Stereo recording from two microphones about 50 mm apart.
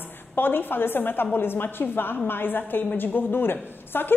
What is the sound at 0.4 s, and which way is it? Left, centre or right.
A woman's voice, left.